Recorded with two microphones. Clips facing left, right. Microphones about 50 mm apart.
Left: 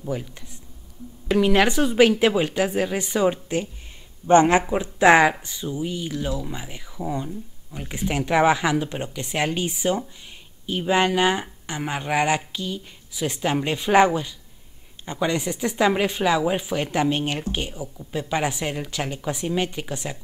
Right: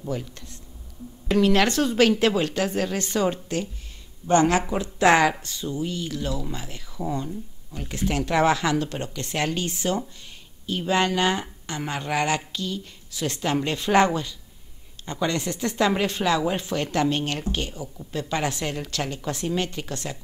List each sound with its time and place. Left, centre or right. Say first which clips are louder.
1.3 s speech: left 1 dB; centre
4.3 s speech: left 4 dB; left